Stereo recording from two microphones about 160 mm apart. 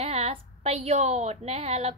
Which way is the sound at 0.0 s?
40° right (ahead or behind).